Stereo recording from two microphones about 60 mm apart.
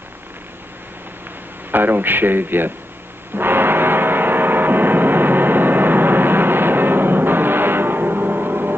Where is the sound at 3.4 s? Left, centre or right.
Right.